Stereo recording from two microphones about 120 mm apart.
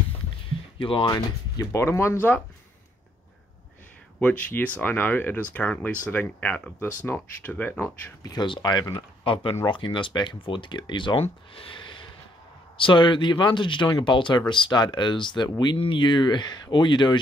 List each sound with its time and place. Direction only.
0.7 s speech: 45° left (ahead or behind); by 2.4 s 20° left (ahead or behind)
4.2 s speech: 10° left (ahead or behind)
8.2 s speech: 35° left (ahead or behind)
9.2 s speech: 50° left (ahead or behind)
11.5 s a sound: 45° left (ahead or behind)
12.7 s speech: 45° left (ahead or behind)